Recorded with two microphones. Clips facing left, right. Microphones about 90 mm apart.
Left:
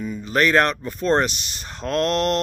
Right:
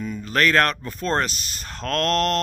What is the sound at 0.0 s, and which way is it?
Speech, 10° left (ahead or behind).